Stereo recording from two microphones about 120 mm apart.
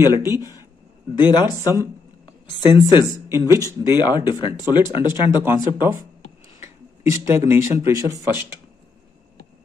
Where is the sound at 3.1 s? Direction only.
25° right (ahead or behind).